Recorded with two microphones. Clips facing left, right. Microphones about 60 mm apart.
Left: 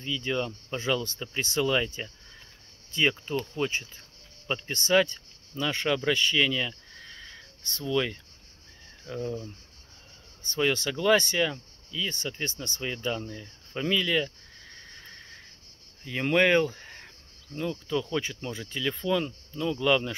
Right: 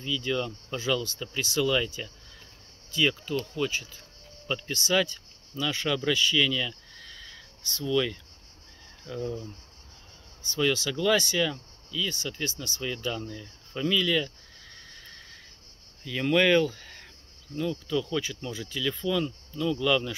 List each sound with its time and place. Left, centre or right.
0.0 s speech: left
2.9 s speech: left
5.5 s speech: left
10.4 s speech: left
10.9 s speech: left
14.9 s horse: left
16.0 s speech: left